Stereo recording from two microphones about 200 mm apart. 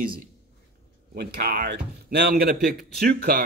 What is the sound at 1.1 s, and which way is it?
Speech, 50° right (ahead or behind).